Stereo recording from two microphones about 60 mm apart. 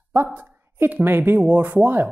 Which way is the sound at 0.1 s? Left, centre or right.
Right.